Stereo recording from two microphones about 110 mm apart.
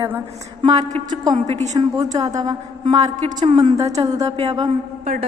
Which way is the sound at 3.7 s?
85° right.